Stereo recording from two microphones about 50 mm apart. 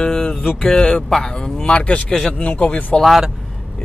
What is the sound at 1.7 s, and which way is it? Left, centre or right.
Music, left.